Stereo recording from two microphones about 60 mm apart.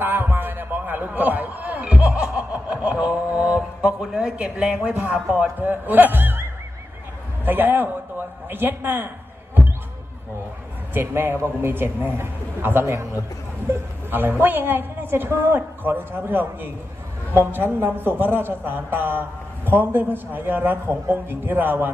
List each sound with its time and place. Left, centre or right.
0.0 s a sound: right; by 5.2 s centre
5.3 s a man's voice: right
7.4 s a man's voice: right
10.9 s a man's voice: right
14.1 s a man's voice: right